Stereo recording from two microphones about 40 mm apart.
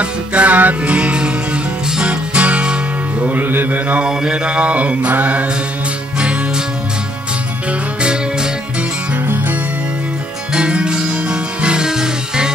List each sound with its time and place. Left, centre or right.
0.0 s mantra: right
0.8 s music: right
3.2 s music: right
3.4 s mantra: right
4.0 s mantra: right
6.1 s music: right
8.0 s music: right
10.5 s music: right